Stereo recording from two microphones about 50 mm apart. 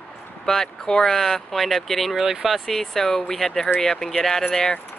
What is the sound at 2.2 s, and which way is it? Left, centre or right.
Speech, centre.